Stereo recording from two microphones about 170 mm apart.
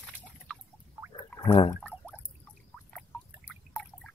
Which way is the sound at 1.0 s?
5° right (ahead or behind).